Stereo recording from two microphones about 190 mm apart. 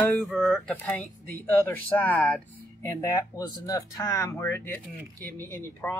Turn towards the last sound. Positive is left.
turn(degrees=10)  # may be behind; listen again after turning